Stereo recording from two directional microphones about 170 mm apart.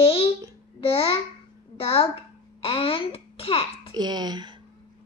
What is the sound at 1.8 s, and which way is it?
Child singing, 35° left (ahead or behind).